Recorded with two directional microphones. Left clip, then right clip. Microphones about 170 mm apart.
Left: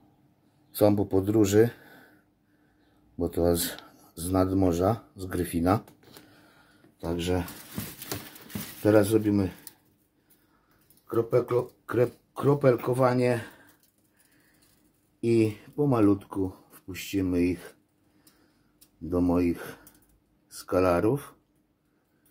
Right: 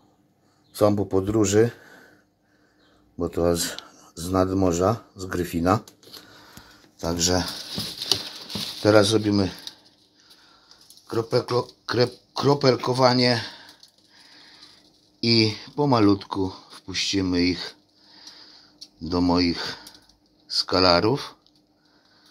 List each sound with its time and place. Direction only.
0.7 s speech: 10° right (ahead or behind)
3.2 s speech: 15° right (ahead or behind)
7.0 s speech: 35° right (ahead or behind)
8.8 s speech: 25° right (ahead or behind)
11.1 s speech: 50° right (ahead or behind)
15.2 s speech: 45° right (ahead or behind)
16.2 s speech: 30° right (ahead or behind)
19.0 s speech: 45° right (ahead or behind)
20.7 s speech: 30° right (ahead or behind)
21.0 s speech: 45° right (ahead or behind)